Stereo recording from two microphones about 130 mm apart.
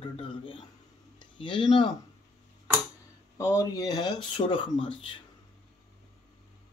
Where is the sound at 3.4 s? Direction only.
25° left (ahead or behind); by 5.2 s 40° left (ahead or behind).